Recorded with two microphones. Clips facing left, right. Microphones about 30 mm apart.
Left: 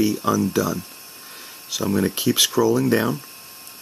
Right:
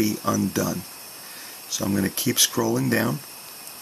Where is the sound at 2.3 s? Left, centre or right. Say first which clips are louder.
Left 4 dB; left.